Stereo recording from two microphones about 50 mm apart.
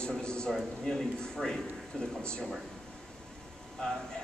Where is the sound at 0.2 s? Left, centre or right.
Centre.